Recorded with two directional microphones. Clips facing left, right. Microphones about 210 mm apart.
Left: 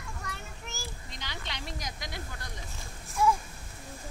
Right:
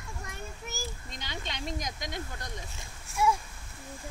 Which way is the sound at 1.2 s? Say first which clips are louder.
Right 4 dB; 20° right (ahead or behind).